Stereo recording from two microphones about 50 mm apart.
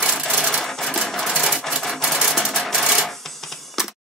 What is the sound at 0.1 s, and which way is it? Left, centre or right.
Sewing machine, centre.